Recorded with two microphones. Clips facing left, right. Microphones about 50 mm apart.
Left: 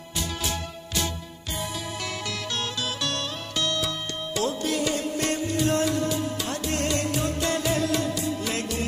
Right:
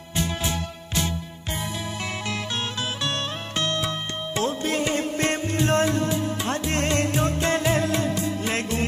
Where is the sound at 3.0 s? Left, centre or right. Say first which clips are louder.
Right 2 dB; right.